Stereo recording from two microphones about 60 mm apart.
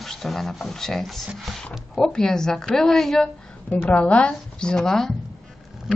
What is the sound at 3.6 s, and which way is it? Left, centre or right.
Speech, left.